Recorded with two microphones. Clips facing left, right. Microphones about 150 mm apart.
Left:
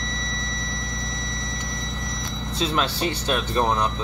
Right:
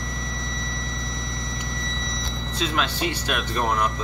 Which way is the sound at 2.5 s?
35° left (ahead or behind).